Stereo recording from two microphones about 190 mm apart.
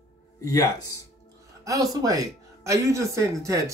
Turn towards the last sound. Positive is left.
turn(degrees=-15)  # may be behind; listen again after turning